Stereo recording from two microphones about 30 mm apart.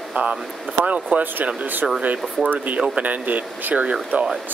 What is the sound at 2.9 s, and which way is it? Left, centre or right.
Speech, right.